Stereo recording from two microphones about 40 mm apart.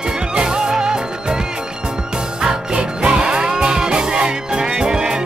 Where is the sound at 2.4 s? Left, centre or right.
Right.